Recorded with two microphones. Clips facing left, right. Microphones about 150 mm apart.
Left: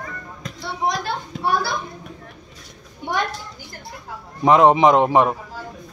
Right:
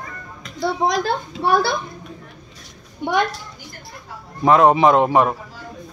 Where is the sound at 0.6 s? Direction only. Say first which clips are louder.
Right 5 dB; 90° right.